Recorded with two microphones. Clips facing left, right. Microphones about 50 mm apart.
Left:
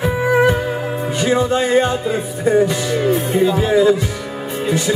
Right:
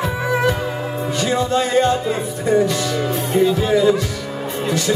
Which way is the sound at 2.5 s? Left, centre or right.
Centre.